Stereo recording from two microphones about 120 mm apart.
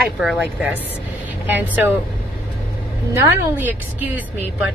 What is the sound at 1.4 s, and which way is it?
Speech, 15° right (ahead or behind).